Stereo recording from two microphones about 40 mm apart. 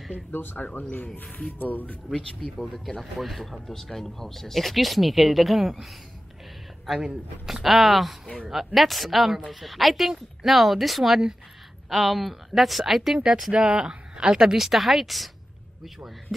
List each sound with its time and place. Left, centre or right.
0.3 s speech: left
1.6 s speech: left
2.0 s speech: centre
3.0 s speech: centre
7.0 s a woman's voice: centre
7.6 s speech: centre
13.5 s a woman's voice: right; by 16.3 s centre